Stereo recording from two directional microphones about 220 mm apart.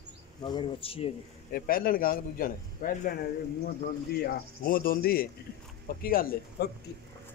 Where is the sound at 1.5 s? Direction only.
40° left (ahead or behind).